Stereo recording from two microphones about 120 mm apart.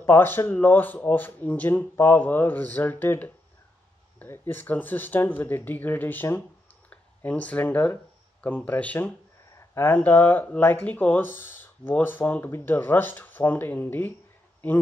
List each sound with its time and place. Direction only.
0.0 s speech: 20° left (ahead or behind)